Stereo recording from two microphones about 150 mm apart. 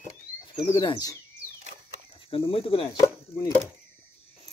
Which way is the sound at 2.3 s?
40° left (ahead or behind).